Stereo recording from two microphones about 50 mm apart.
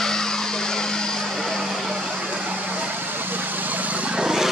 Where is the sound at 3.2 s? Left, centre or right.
Right; by 4.5 s centre.